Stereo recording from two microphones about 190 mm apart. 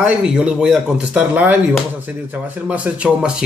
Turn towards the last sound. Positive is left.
turn(degrees=-5)  # may be behind; listen again after turning